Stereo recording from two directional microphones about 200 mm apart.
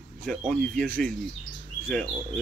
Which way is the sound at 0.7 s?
5° left (ahead or behind).